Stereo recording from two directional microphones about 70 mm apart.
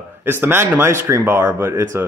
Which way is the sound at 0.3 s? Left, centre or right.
Right.